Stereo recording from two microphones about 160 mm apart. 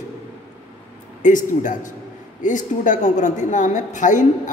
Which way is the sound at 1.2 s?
50° left (ahead or behind).